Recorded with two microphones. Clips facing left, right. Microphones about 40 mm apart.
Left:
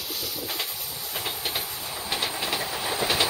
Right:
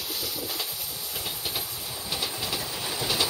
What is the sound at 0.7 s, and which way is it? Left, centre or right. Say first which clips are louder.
Vehicle: left 1 dB; centre.